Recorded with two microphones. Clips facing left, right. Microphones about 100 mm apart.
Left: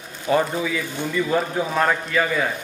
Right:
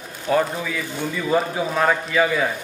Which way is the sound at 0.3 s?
Centre (ahead or behind).